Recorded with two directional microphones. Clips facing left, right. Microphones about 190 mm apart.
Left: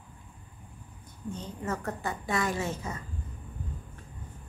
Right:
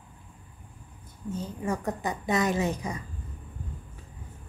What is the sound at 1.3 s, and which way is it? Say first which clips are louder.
A woman's voice: right 4 dB; 10° right (ahead or behind).